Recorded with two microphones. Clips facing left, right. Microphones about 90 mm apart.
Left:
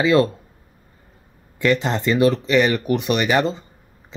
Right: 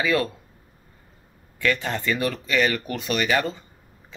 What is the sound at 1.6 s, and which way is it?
Speech, 25° left (ahead or behind).